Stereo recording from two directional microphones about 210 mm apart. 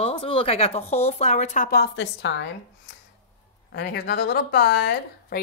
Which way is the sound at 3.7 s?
50° left (ahead or behind).